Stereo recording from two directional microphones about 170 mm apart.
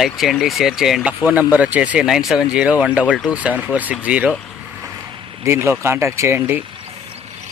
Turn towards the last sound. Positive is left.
turn(degrees=-15)  # may be behind; listen again after turning